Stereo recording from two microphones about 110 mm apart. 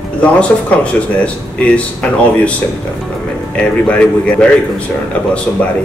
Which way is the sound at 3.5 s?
10° left (ahead or behind).